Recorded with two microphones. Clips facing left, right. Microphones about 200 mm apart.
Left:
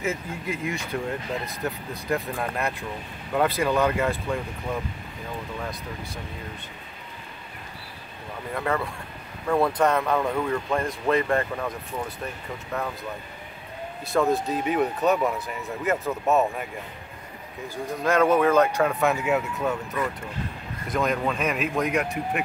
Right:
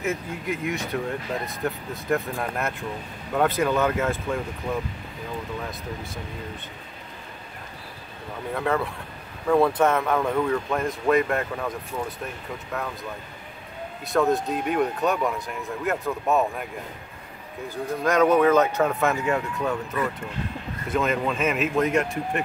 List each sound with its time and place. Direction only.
0.0 s speech: centre (ahead or behind)
8.5 s speech: centre (ahead or behind)
12.7 s speech: centre (ahead or behind)
14.0 s speech: centre (ahead or behind)
18.0 s speech: centre (ahead or behind)